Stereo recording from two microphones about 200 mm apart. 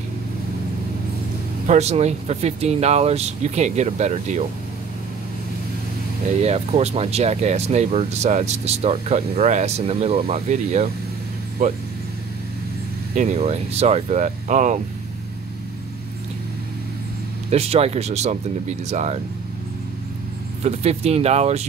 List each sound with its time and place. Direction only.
1.7 s speech: 35° right (ahead or behind)
6.4 s speech: 30° right (ahead or behind)
13.1 s speech: 35° right (ahead or behind)
17.5 s speech: 30° right (ahead or behind)
20.6 s speech: 30° right (ahead or behind)